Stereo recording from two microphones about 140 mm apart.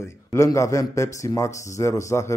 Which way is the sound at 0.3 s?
20° left (ahead or behind).